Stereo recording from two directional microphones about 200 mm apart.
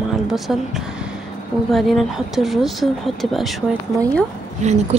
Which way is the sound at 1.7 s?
Centre (ahead or behind).